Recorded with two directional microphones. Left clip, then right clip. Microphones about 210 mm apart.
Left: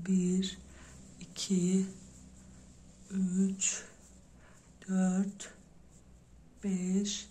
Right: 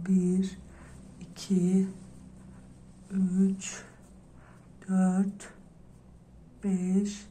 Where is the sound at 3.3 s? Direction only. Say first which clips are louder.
Even; 35° left (ahead or behind).